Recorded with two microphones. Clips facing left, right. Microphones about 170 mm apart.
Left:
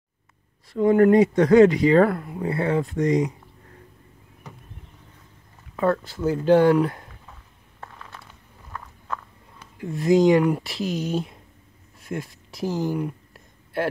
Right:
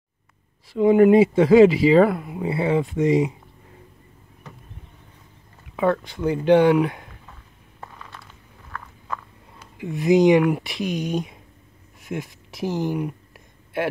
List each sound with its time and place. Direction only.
0.8 s speech: 10° right (ahead or behind)
5.8 s speech: centre (ahead or behind)
6.8 s a sound: 5° right (ahead or behind)
10.0 s speech: 20° right (ahead or behind)